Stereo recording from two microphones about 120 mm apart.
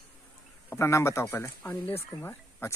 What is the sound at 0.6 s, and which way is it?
A man's voice, 25° left (ahead or behind).